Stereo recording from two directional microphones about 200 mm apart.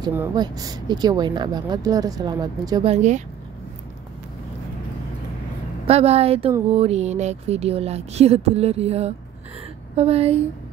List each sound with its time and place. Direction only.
0.0 s speech: 15° right (ahead or behind)
2.9 s speech: 35° right (ahead or behind)
5.9 s speech: 30° right (ahead or behind)